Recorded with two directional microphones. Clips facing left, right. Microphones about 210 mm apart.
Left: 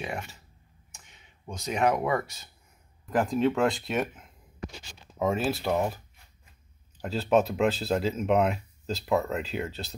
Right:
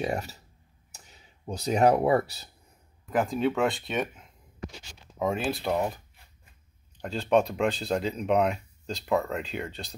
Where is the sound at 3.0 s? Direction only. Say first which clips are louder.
Left 1 dB; 5° right (ahead or behind).